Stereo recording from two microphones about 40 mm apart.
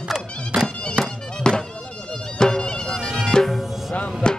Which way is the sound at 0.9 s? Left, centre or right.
Centre.